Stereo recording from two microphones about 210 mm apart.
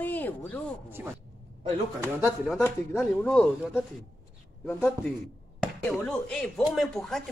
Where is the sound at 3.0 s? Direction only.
5° left (ahead or behind).